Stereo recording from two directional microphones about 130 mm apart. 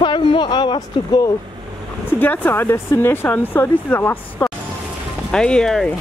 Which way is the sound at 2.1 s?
15° left (ahead or behind).